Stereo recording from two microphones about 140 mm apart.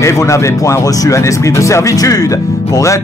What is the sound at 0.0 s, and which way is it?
Speech, 20° left (ahead or behind).